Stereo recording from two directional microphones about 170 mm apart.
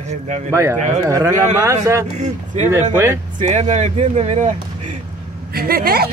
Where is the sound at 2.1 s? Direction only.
45° right (ahead or behind).